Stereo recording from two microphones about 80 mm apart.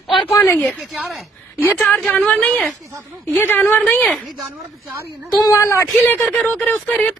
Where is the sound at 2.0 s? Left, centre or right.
Left.